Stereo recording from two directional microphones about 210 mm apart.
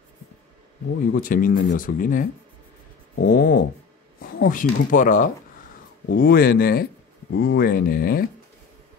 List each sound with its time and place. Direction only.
1.1 s speech: 40° left (ahead or behind)
3.3 s speech: 45° left (ahead or behind)